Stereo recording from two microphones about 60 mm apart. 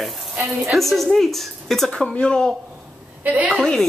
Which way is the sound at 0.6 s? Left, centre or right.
Centre.